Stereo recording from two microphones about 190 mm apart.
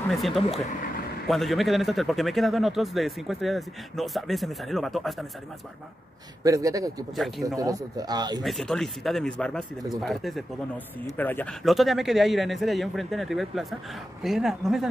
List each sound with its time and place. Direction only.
0.1 s a man's voice: centre (ahead or behind)
6.4 s speech: 15° right (ahead or behind)
7.2 s a man's voice: centre (ahead or behind)
7.4 s speech: 20° right (ahead or behind)
8.4 s a man's voice: centre (ahead or behind)